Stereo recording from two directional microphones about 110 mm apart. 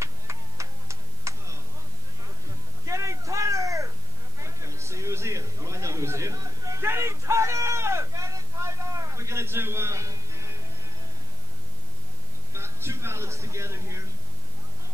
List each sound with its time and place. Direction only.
0.0 s tick-tock: 25° right (ahead or behind)
2.9 s a sound: 30° right (ahead or behind)
12.5 s music: 25° right (ahead or behind)